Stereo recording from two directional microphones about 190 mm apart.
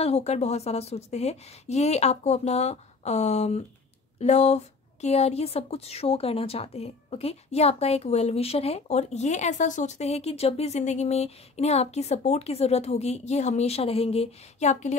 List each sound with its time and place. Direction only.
0.0 s a woman's voice: 35° left (ahead or behind)